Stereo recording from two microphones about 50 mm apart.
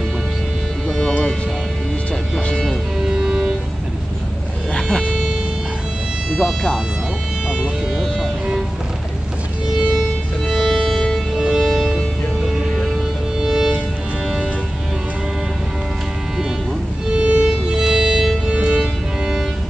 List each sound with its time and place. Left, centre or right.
3.1 s music: centre
4.7 s vehicle: centre
6.4 s music: centre
7.9 s music: centre
9.9 s music: centre
11.3 s music: centre
13.4 s music: centre
17.1 s music: right
18.5 s music: right